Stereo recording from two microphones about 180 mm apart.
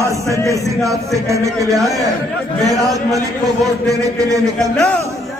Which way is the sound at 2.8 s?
20° right (ahead or behind).